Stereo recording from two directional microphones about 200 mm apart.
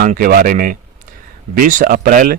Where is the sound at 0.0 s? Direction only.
45° right (ahead or behind).